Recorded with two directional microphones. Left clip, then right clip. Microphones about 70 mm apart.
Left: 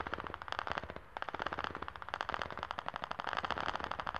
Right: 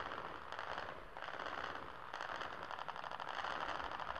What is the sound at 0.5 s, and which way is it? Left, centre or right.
Firecracker, left.